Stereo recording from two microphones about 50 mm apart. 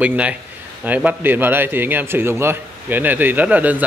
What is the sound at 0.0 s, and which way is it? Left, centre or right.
A man's voice, right.